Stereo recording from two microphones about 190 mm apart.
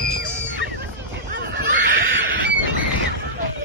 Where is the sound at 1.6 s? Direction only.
60° right (ahead or behind).